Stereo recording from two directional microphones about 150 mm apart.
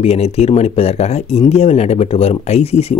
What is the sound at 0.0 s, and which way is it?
Speech, 45° left (ahead or behind).